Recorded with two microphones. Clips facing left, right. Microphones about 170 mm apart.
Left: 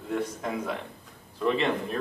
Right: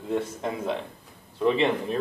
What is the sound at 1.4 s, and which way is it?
Speech, 15° right (ahead or behind).